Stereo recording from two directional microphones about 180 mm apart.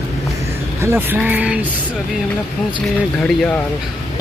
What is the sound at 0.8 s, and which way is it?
Speech, 10° right (ahead or behind).